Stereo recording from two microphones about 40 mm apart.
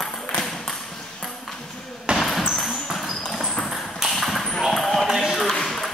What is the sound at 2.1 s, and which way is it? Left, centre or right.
Basketball bounce, right.